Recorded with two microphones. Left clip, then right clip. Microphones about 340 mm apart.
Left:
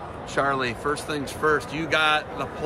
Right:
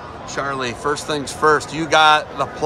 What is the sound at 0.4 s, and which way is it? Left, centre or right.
Speech, centre.